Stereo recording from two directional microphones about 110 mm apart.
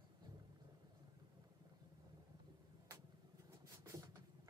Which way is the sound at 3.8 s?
35° right (ahead or behind).